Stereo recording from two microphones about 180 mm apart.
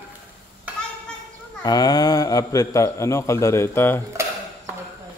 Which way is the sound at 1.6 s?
20° left (ahead or behind).